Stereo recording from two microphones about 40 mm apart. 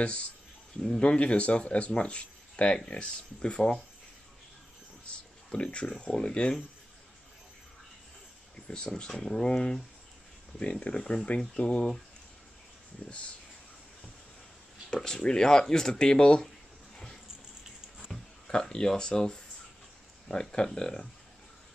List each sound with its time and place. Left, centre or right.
0.0 s speech: left
5.0 s speech: left
8.6 s speech: left
15.0 s speech: centre
18.1 s a sound: centre
18.5 s speech: centre